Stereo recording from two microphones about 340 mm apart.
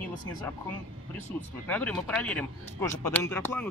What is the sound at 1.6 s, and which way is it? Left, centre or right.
Speech, centre.